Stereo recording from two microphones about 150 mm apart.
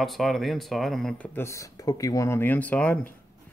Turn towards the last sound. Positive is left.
turn(degrees=10)  # may be behind; listen again after turning